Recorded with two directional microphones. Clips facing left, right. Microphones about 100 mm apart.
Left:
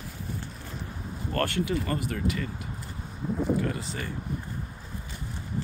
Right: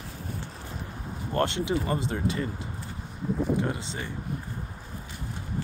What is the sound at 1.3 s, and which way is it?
Speech, 20° right (ahead or behind).